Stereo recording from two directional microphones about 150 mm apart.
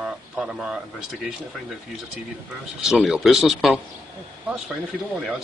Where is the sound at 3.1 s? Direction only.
Centre (ahead or behind).